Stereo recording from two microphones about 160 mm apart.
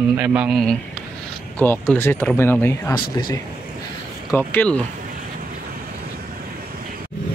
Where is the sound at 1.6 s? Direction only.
15° left (ahead or behind).